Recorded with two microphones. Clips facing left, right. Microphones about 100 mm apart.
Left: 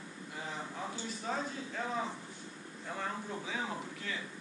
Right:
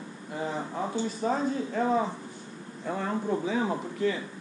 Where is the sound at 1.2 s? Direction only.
45° right (ahead or behind).